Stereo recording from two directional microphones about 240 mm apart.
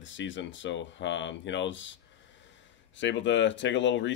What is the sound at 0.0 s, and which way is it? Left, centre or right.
Speech, left.